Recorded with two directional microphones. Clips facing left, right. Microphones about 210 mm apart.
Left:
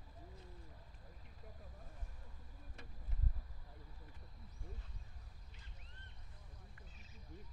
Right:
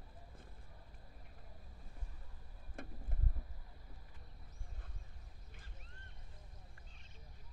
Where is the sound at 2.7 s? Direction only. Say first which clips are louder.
Right 10 dB; 50° right (ahead or behind).